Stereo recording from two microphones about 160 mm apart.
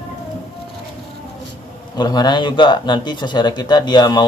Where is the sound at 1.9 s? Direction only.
25° left (ahead or behind).